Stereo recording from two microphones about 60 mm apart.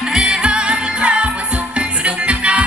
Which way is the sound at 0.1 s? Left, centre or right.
Centre.